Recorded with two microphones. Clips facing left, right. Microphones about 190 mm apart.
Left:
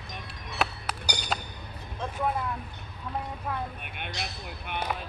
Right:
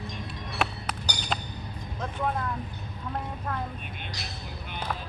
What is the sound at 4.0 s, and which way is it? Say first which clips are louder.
Vehicle: left 3 dB; 60° left (ahead or behind).